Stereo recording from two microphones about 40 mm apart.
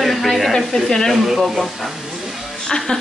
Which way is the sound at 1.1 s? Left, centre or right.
Centre.